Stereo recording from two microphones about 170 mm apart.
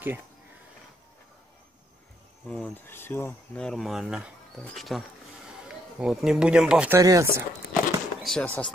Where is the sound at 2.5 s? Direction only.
10° left (ahead or behind); by 6.9 s 5° right (ahead or behind).